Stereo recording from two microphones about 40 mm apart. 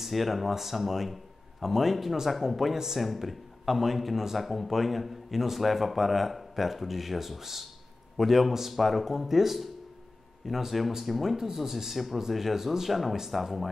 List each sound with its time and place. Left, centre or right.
0.0 s a man's voice: centre